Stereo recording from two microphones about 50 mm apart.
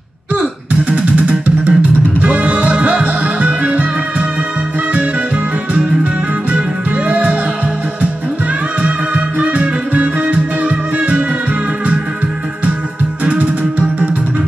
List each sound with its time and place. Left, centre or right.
0.7 s music: right
7.1 s music: right
8.8 s music: right
13.2 s music: right